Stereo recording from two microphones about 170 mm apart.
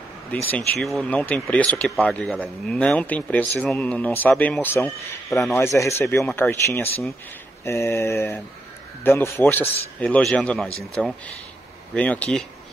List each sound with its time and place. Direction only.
0.3 s speech: 10° left (ahead or behind)
5.5 s speech: 15° left (ahead or behind)